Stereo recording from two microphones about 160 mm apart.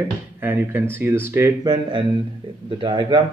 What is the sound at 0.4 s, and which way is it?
Speech, 10° right (ahead or behind).